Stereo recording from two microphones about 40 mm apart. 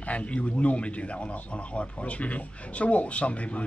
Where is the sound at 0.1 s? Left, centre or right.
Left.